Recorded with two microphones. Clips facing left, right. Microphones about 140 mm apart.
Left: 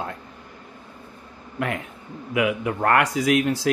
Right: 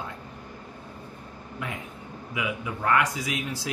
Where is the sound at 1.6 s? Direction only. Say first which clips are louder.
Left 9 dB; 70° left (ahead or behind).